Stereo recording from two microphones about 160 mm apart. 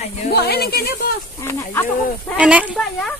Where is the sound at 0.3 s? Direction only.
85° left.